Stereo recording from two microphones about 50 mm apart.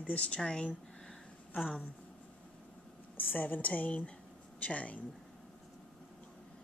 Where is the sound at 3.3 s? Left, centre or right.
Left.